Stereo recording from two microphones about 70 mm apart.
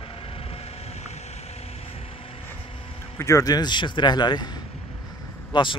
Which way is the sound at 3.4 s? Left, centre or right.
Left.